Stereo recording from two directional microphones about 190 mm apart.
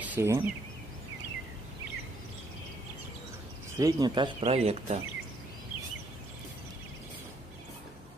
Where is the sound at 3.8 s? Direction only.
20° right (ahead or behind).